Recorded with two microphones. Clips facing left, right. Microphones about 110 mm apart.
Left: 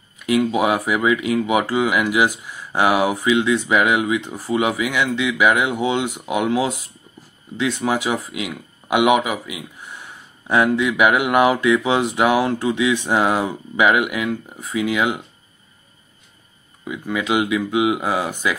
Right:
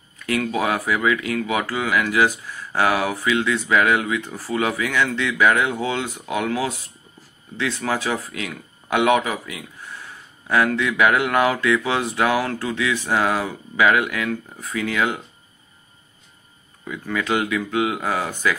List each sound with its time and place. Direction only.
0.2 s speech: 15° left (ahead or behind)
16.8 s speech: 15° left (ahead or behind)